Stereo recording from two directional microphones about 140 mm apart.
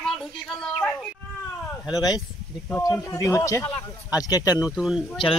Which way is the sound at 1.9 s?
30° left (ahead or behind).